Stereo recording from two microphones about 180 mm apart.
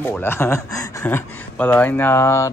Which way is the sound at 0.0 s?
10° left (ahead or behind).